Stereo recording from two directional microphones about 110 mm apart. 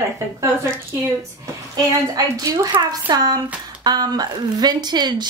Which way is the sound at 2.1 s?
35° right (ahead or behind).